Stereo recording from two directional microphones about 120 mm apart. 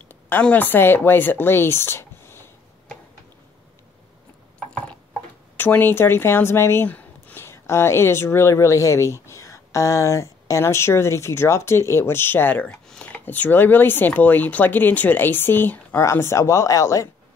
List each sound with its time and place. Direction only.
0.1 s speech: 15° left (ahead or behind)
4.6 s mechanisms: 10° left (ahead or behind)
5.6 s speech: 15° left (ahead or behind)